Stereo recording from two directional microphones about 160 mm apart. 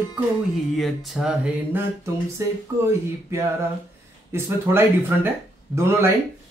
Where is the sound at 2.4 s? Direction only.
20° right (ahead or behind).